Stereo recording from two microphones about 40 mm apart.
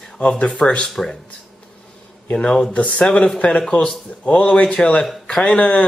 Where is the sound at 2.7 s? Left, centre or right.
Left.